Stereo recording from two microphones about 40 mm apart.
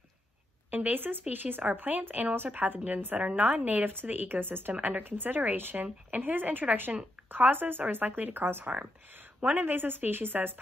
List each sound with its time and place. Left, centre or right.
0.7 s a woman's voice: right
4.7 s speech: right
5.0 s a woman's voice: right
7.2 s a woman's voice: right
9.4 s a woman's voice: right